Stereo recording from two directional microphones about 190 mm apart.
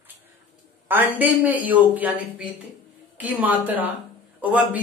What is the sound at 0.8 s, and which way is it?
Speech, 10° right (ahead or behind).